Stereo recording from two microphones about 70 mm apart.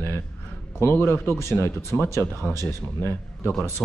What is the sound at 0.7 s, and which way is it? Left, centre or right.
Speech, left.